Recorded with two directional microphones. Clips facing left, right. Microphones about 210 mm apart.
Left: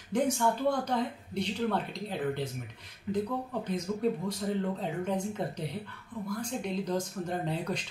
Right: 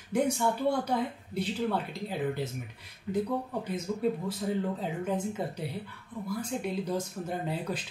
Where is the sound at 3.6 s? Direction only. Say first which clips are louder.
Left 2 dB; 5° right (ahead or behind).